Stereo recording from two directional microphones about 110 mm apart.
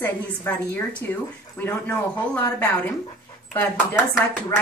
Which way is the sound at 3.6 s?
20° left (ahead or behind).